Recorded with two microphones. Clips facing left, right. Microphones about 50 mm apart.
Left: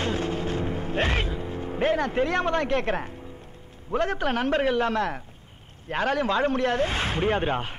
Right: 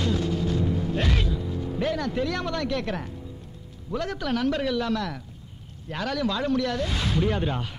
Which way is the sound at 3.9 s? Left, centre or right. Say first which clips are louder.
Left 3 dB; left.